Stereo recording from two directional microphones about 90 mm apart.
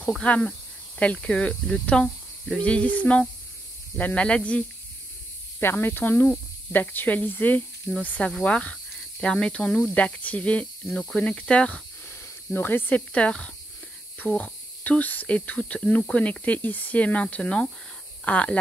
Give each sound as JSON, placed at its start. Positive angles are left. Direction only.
{"t": 0.2, "sound": "speech", "side_deg": 15}
{"t": 5.6, "sound": "speech", "side_deg": 25}
{"t": 12.5, "sound": "speech", "side_deg": 25}